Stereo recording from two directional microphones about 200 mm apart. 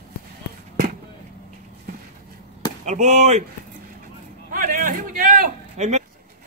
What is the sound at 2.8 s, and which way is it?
Speech, 35° right (ahead or behind).